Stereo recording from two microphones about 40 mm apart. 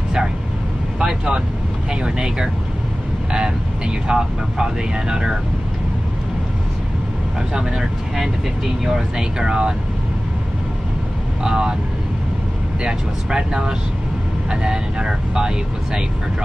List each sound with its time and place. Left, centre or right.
0.9 s speech: right
7.5 s speech: centre
11.4 s speech: centre
12.8 s speech: centre